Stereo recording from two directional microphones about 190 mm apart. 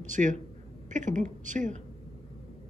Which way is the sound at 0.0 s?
40° right (ahead or behind).